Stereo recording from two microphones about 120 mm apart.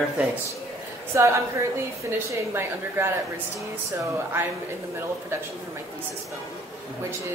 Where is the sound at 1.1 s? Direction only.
20° right (ahead or behind).